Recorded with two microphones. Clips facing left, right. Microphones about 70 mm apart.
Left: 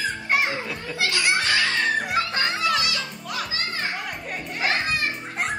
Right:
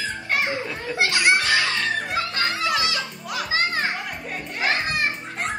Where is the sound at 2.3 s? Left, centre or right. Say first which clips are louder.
Even; left.